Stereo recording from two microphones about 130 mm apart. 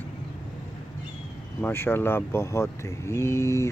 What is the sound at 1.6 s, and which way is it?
Speech, 15° left (ahead or behind).